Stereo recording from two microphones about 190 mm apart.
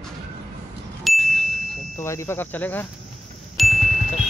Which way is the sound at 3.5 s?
Centre (ahead or behind).